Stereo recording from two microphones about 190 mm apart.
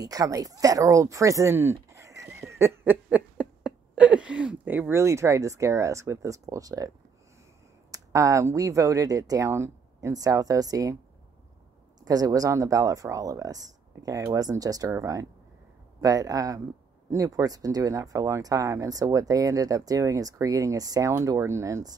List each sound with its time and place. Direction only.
0.0 s speech: 20° right (ahead or behind)
7.9 s speech: 15° right (ahead or behind)
12.0 s speech: 20° right (ahead or behind)